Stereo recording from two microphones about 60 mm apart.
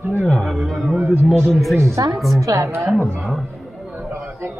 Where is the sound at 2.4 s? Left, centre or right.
Right.